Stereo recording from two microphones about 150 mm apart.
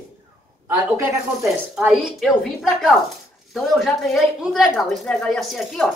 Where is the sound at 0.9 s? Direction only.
5° right (ahead or behind).